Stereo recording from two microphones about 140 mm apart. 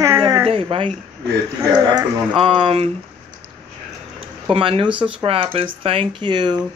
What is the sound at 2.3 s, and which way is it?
Speech, 40° right (ahead or behind).